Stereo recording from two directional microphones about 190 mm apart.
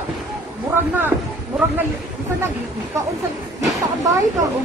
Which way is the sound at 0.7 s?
10° right (ahead or behind).